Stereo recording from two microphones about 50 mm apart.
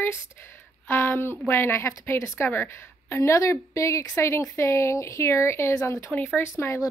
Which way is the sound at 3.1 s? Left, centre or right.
Left.